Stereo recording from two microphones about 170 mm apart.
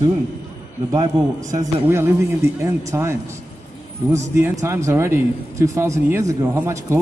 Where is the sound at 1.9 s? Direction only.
15° right (ahead or behind).